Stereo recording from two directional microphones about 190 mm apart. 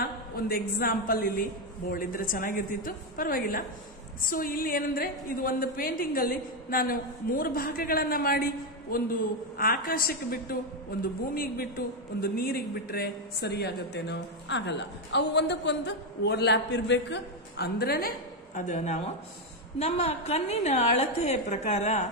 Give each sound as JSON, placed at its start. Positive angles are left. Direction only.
{"t": 0.0, "sound": "a woman's voice", "side_deg": 50}